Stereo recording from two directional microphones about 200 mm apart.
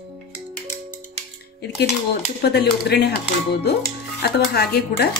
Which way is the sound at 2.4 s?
55° left (ahead or behind).